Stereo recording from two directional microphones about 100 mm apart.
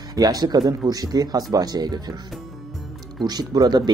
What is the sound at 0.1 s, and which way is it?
Speech, 40° right (ahead or behind).